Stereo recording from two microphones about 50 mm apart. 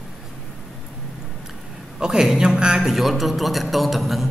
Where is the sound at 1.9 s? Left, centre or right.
Centre.